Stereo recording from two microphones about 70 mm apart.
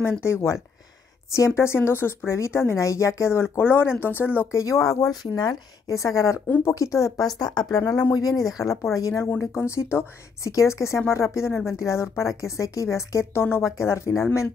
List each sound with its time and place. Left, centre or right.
0.2 s speech: left
4.6 s speech: left
5.2 s speech: left
5.9 s speech: left
7.3 s speech: left
7.8 s speech: left
9.4 s speech: left